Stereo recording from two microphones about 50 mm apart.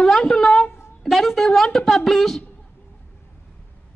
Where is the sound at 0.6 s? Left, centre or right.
Left.